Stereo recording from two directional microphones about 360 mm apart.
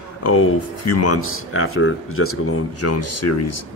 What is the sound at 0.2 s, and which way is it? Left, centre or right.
Speech, left.